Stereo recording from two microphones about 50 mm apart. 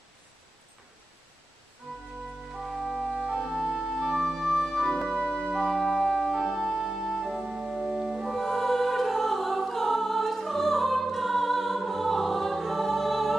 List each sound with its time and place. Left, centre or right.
2.5 s music: centre
3.6 s organ: centre
4.8 s music: centre
7.4 s organ: centre
8.3 s music: centre